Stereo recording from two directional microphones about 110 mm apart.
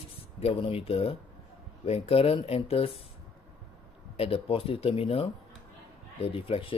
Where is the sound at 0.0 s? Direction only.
65° left (ahead or behind).